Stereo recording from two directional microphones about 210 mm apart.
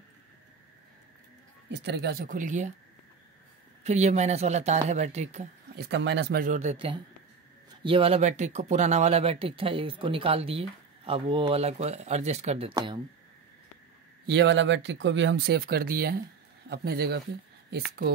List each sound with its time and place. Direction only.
1.8 s speech: 55° right (ahead or behind); by 2.7 s 35° right (ahead or behind)
3.8 s speech: 30° right (ahead or behind)
5.8 s speech: 55° right (ahead or behind); by 13.0 s 20° right (ahead or behind)
14.2 s speech: 55° right (ahead or behind)